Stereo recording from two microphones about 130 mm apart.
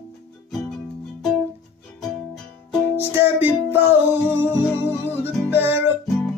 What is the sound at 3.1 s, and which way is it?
Music, 15° right (ahead or behind).